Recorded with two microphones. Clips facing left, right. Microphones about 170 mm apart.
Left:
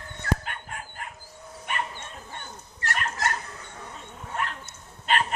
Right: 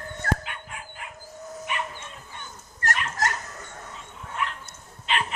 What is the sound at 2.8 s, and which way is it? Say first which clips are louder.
Dog: right 4 dB; 45° right (ahead or behind).